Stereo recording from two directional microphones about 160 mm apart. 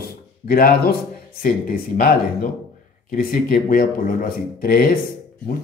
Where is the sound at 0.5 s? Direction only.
65° left (ahead or behind).